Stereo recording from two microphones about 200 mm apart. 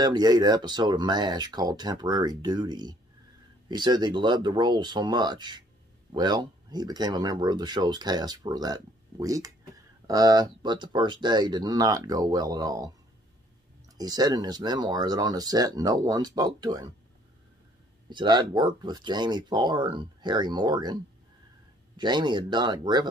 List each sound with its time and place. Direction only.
0.0 s speech: 20° right (ahead or behind)
13.9 s speech: 20° right (ahead or behind)
18.1 s speech: 20° right (ahead or behind)